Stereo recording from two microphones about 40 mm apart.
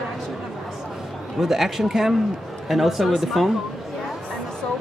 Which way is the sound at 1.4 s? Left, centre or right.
Centre.